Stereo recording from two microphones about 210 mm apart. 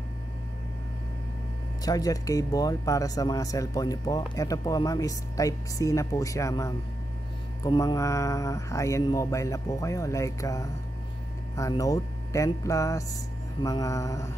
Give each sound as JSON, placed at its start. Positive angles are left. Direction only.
{"t": 1.9, "sound": "speech", "side_deg": 15}